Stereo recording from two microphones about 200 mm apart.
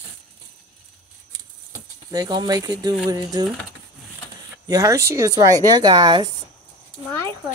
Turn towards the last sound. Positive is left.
turn(degrees=10)  # may be behind; listen again after turning